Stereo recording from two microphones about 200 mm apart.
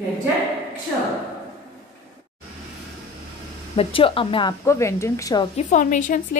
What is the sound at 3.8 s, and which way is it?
Speech, 25° left (ahead or behind).